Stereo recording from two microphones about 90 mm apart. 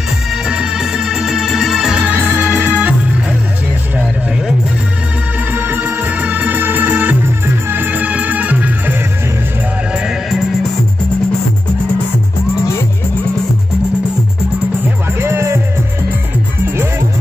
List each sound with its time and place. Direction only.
0.3 s music: 10° right (ahead or behind)
2.1 s organ: 20° right (ahead or behind)
5.5 s music: 20° right (ahead or behind)
15.1 s music: 30° right (ahead or behind)